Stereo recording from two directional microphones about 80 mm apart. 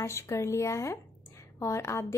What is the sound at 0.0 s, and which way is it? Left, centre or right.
A woman's voice, left.